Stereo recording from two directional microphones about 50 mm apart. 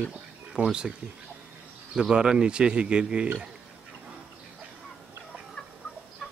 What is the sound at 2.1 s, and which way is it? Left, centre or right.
Speech, centre.